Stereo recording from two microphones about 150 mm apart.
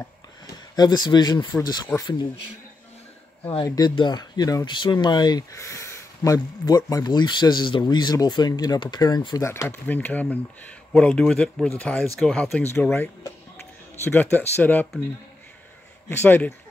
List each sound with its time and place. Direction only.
0.7 s speech: 30° left (ahead or behind)
3.4 s speech: 30° left (ahead or behind)
9.5 s speech: 15° left (ahead or behind)
14.0 s speech: 15° left (ahead or behind)
16.1 s speech: 15° left (ahead or behind)